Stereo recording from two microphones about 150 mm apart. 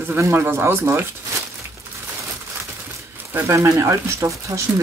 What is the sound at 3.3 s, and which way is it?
Speech, 15° right (ahead or behind).